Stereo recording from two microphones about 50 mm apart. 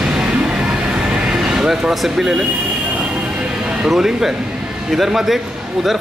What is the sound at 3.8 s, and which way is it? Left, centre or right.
Speech, centre.